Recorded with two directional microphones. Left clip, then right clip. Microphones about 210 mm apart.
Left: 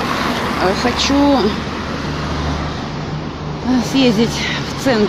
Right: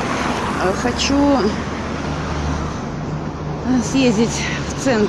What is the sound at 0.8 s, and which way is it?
Speech, 5° left (ahead or behind).